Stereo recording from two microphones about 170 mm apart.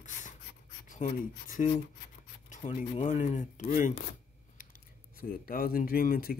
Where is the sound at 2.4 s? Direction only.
50° left (ahead or behind).